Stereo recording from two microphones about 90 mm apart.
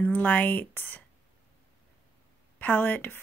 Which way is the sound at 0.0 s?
15° left (ahead or behind).